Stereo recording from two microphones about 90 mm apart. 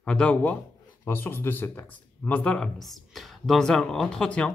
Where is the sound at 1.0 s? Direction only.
25° left (ahead or behind).